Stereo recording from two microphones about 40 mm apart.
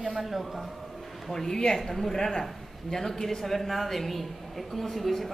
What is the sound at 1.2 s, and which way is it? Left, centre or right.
A man's voice, centre.